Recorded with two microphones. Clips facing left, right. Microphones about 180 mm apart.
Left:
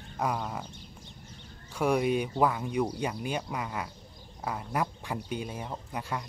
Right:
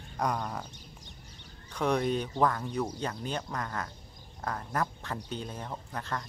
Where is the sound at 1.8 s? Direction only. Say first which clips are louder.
Left 2 dB; 10° left (ahead or behind).